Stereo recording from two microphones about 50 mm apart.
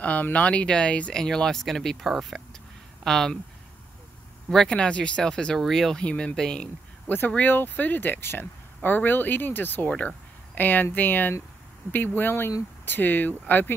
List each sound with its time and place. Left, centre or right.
0.0 s speech: left
1.1 s speech: centre
4.6 s speech: centre
5.9 s speech: centre
7.1 s speech: left
9.8 s speech: left